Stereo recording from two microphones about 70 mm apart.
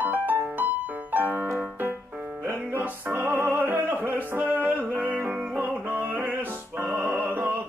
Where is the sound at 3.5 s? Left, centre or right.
Right.